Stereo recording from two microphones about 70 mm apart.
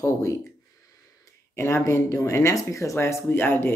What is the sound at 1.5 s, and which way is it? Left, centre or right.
Speech, left.